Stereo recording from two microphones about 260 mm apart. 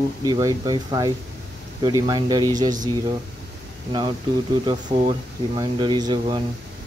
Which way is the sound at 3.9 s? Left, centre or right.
Centre.